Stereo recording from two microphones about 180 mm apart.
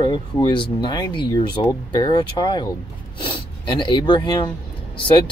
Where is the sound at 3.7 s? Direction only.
25° left (ahead or behind).